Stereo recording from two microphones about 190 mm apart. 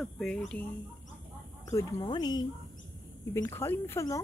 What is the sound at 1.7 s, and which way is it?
Speech, 15° left (ahead or behind).